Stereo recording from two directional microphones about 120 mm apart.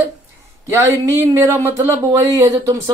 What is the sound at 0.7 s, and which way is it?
Speech, 20° right (ahead or behind).